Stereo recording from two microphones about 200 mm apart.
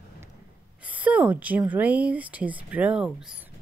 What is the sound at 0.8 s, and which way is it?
Speech, 5° right (ahead or behind).